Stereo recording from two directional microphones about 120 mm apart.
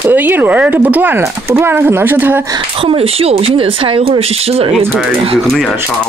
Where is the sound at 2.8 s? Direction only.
55° right (ahead or behind).